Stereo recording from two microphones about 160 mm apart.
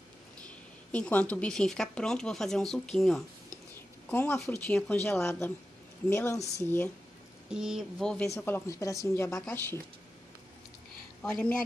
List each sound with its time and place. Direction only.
0.9 s speech: 10° left (ahead or behind)
3.7 s speech: 15° left (ahead or behind)
7.4 s speech: 5° right (ahead or behind)
8.4 s speech: 15° left (ahead or behind)
11.2 s speech: 5° left (ahead or behind)